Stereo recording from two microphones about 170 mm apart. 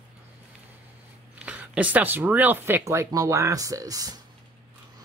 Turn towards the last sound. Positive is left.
turn(degrees=-20)  # may be behind; listen again after turning